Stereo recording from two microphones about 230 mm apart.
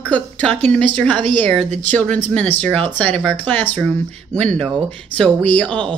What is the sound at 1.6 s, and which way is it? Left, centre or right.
Speech, right.